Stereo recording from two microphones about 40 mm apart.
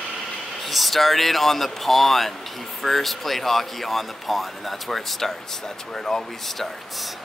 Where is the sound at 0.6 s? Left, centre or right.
Centre.